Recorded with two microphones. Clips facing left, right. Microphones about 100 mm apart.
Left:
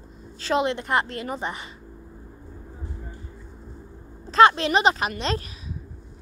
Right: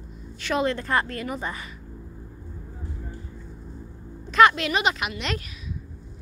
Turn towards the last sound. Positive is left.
turn(degrees=35)  # may be behind; listen again after turning